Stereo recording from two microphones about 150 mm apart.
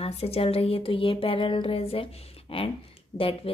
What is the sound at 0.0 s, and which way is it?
Speech, 40° left (ahead or behind).